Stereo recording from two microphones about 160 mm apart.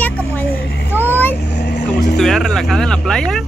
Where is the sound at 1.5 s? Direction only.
90° left.